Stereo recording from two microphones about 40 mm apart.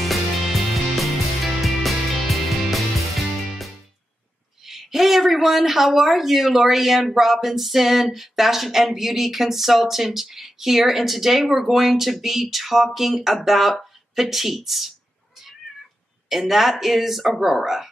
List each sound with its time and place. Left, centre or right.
0.0 s music: centre
4.6 s speech: centre
16.3 s speech: centre